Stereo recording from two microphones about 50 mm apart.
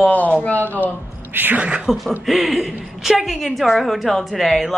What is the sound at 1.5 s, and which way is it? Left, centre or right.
Speech, right.